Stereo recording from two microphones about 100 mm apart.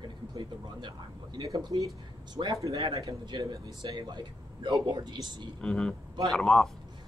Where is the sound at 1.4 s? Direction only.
35° right (ahead or behind).